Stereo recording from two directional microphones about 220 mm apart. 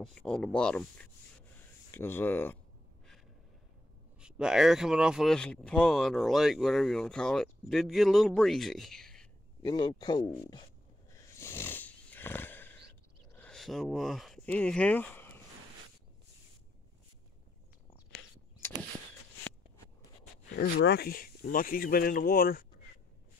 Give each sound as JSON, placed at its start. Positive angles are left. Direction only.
{"t": 0.0, "sound": "speech", "side_deg": 5}
{"t": 4.2, "sound": "speech", "side_deg": -5}
{"t": 9.6, "sound": "speech", "side_deg": 20}
{"t": 11.1, "sound": "a sound", "side_deg": 10}
{"t": 13.3, "sound": "speech", "side_deg": 5}
{"t": 20.5, "sound": "speech", "side_deg": 45}